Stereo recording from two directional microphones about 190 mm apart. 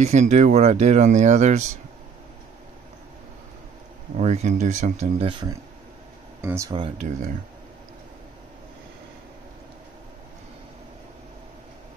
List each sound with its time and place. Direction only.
0.0 s speech: 35° right (ahead or behind)
4.2 s speech: 35° right (ahead or behind)
5.3 s speech: 25° right (ahead or behind)
6.7 s speech: 25° right (ahead or behind)
7.1 s speech: 40° right (ahead or behind)